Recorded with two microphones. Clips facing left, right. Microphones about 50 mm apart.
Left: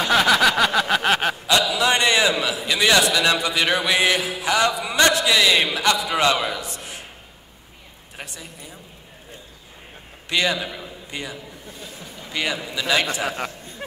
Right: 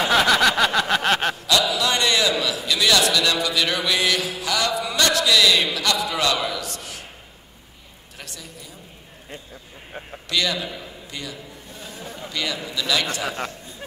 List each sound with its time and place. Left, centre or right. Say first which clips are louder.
0.1 s a sound: left 2 dB; centre
1.6 s a man's voice: left 2 dB; left
8.2 s a man's voice: left 3 dB; left
10.3 s a man's voice: left 2 dB; left